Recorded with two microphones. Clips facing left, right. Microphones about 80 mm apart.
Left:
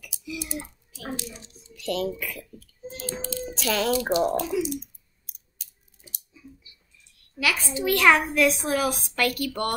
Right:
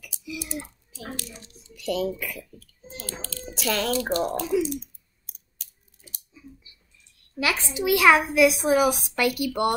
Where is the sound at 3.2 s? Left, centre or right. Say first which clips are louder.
Left 7 dB; centre.